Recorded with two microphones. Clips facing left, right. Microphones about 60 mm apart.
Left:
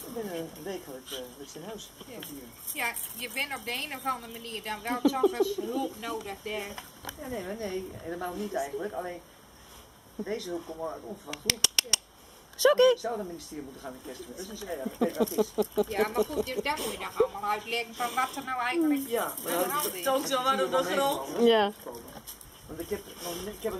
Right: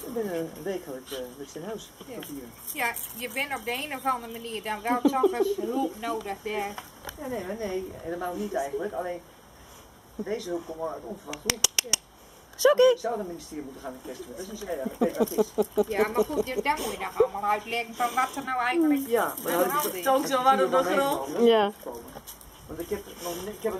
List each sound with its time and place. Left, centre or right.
0.0 s speech: centre
0.7 s a woman's voice: right
1.1 s speech: centre
2.7 s a woman's voice: centre; by 6.7 s right
6.7 s a woman's voice: centre
10.3 s a woman's voice: centre
13.5 s speech: right
14.0 s a woman's voice: centre
15.9 s a woman's voice: right
16.7 s speech: centre
17.3 s a woman's voice: right
17.9 s a woman's voice: centre
20.2 s a woman's voice: right
20.7 s a woman's voice: centre